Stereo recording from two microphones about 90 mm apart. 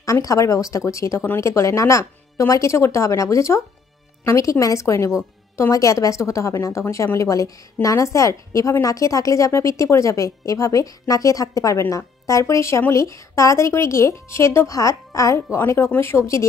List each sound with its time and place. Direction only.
0.0 s a woman's voice: 40° left (ahead or behind)